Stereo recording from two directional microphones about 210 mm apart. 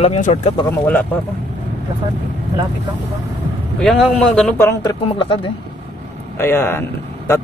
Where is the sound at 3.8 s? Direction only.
Centre (ahead or behind).